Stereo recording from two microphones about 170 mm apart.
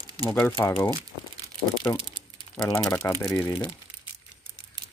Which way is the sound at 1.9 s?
20° left (ahead or behind).